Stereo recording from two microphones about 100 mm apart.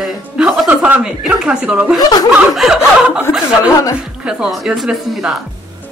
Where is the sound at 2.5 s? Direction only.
5° right (ahead or behind).